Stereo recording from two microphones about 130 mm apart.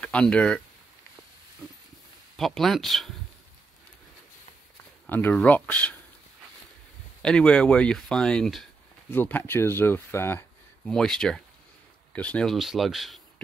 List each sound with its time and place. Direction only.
0.0 s speech: 10° left (ahead or behind)
2.3 s speech: centre (ahead or behind)
5.0 s a sound: 15° left (ahead or behind)
5.3 s speech: 10° left (ahead or behind)
7.2 s speech: 5° left (ahead or behind)
9.1 s speech: 15° left (ahead or behind)
10.9 s speech: 5° left (ahead or behind)